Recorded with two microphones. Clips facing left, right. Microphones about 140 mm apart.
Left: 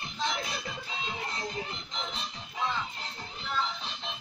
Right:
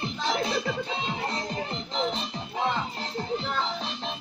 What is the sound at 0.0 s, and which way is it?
Music, 35° right (ahead or behind).